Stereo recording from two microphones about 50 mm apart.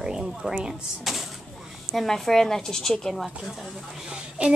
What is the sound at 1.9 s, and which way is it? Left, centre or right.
Speech, centre.